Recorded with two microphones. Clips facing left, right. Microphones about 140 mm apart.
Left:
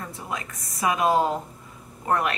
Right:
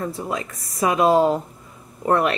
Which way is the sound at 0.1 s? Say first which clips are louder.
Right 6 dB; 35° right (ahead or behind).